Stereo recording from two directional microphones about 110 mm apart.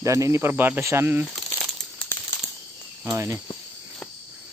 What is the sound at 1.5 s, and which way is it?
Crumpling, 10° left (ahead or behind).